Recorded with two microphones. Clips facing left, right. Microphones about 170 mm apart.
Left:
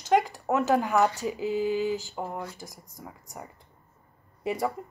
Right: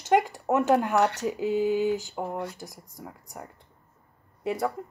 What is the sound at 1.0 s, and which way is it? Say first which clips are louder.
Speech: even; 75° right (ahead or behind).